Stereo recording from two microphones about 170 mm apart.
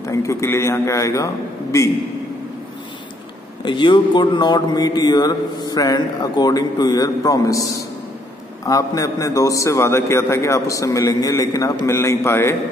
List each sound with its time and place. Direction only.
0.0 s a man's voice: 20° left (ahead or behind)
3.6 s a man's voice: 30° left (ahead or behind)